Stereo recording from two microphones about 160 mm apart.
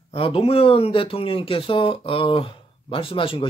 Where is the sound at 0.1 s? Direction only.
35° left (ahead or behind).